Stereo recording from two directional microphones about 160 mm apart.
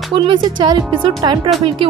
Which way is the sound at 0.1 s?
30° right (ahead or behind).